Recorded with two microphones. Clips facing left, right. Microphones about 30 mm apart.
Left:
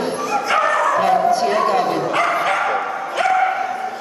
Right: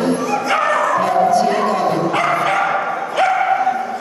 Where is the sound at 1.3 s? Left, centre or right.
Centre.